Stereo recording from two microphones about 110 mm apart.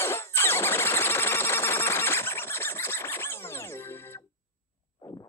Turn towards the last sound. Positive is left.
turn(degrees=20)  # may be behind; listen again after turning